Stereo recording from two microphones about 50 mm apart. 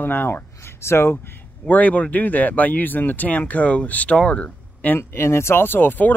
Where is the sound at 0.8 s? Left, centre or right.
Left.